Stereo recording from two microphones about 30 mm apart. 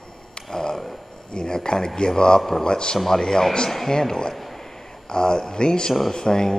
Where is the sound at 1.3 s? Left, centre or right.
Left.